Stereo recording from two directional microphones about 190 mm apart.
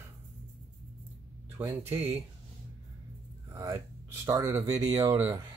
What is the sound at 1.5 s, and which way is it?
Speech, 15° right (ahead or behind).